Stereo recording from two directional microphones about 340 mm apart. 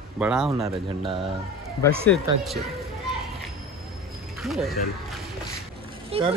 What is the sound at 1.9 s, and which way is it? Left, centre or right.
Speech, centre.